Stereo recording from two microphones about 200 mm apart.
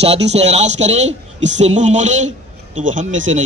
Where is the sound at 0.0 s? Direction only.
30° right (ahead or behind).